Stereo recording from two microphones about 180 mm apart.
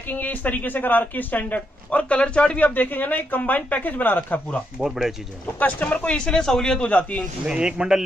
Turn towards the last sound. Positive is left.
turn(degrees=-5)  # may be behind; listen again after turning